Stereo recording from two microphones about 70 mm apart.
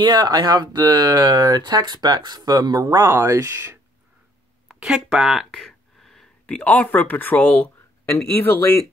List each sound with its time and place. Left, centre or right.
0.0 s speech: right
2.8 s speech: right
4.7 s speech: centre
5.7 s a sound: centre; by 8.1 s left
8.4 s speech: left